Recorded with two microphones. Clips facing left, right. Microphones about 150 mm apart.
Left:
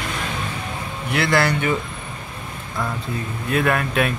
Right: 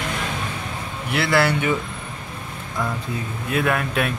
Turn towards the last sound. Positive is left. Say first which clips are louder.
# left 2 dB
turn(degrees=0)  # may be behind; listen again after turning